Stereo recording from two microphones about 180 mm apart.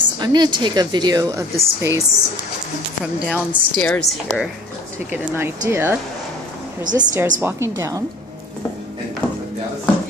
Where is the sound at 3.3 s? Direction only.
10° left (ahead or behind).